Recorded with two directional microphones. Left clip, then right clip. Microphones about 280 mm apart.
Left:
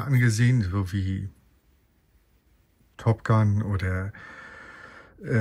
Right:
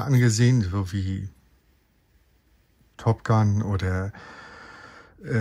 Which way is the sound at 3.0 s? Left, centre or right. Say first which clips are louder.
Right 1 dB; centre.